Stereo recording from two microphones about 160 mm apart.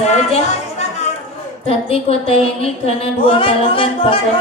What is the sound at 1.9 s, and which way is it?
Speech, 40° left (ahead or behind).